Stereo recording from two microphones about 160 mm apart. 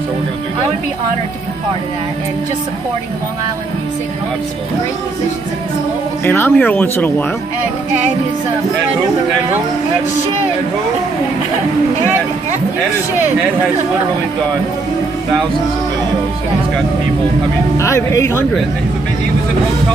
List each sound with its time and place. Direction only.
6.2 s speech: 15° left (ahead or behind)
17.7 s speech: 20° left (ahead or behind)